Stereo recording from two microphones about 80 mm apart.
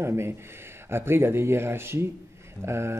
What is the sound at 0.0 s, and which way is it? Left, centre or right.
Speech, right.